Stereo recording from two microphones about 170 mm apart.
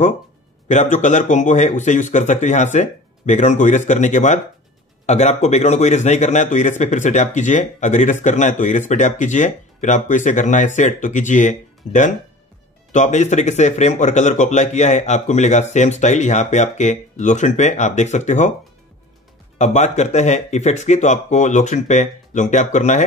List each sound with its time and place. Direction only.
0.7 s a man's voice: 45° left (ahead or behind)
19.6 s a man's voice: 45° left (ahead or behind)